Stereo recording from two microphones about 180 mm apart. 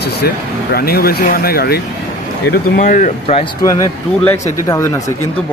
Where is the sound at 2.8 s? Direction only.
45° left (ahead or behind).